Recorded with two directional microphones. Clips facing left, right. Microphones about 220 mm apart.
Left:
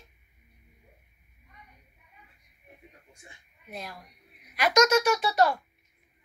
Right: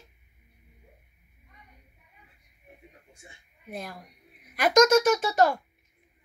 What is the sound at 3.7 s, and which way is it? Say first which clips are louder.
Speech: right 3 dB; 50° right (ahead or behind).